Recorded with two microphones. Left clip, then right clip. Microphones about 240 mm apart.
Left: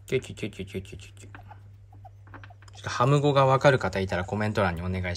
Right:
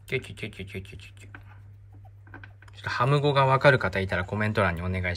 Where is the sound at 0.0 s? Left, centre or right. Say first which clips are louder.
Left 2 dB; centre.